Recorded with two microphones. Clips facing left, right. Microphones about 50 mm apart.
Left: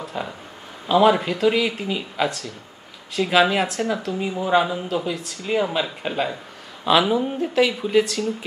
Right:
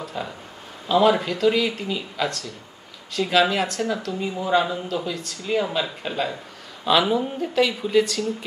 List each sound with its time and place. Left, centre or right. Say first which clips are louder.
0.0 s speech: left 1 dB; centre